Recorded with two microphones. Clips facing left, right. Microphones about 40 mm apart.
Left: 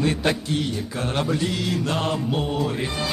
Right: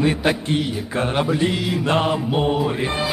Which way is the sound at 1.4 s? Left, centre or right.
Right.